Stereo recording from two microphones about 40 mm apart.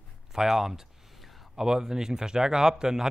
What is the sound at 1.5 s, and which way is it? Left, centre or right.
Speech, centre.